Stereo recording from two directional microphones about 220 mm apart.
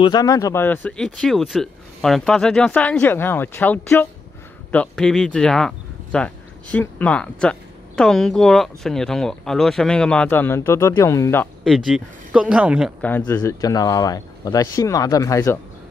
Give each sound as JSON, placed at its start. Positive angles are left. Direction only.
{"t": 0.0, "sound": "speech", "side_deg": 20}
{"t": 11.6, "sound": "speech", "side_deg": 0}
{"t": 13.2, "sound": "speech", "side_deg": 15}